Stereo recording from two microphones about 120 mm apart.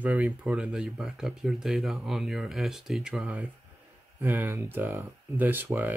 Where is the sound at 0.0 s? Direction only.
10° right (ahead or behind).